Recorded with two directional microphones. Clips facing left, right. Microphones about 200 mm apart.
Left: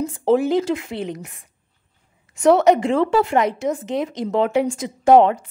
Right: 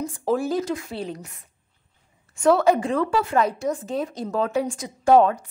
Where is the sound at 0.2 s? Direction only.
20° left (ahead or behind).